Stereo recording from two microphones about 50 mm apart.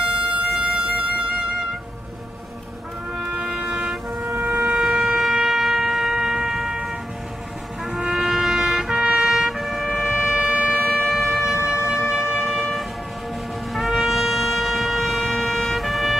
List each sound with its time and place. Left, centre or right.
0.3 s music: right
3.3 s music: right
4.4 s shofar: right
4.7 s shofar: centre
5.0 s shofar: centre
7.8 s trumpet: centre
9.1 s emergency vehicle: centre
10.0 s shofar: right
11.1 s shofar: centre
11.5 s shofar: centre
13.7 s brass instrument: centre